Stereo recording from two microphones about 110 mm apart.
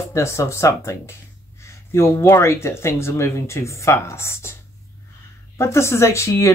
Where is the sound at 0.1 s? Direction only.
25° left (ahead or behind).